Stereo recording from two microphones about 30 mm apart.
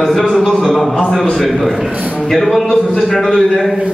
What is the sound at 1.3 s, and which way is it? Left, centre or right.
A woman's voice, centre.